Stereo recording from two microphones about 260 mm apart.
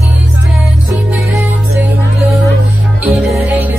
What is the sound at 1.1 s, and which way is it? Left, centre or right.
Music, centre.